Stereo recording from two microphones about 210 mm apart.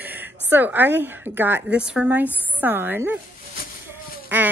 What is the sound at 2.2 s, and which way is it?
Speech, 10° left (ahead or behind).